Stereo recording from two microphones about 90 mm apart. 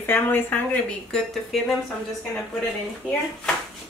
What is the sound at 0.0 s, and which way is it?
Speech, 25° left (ahead or behind).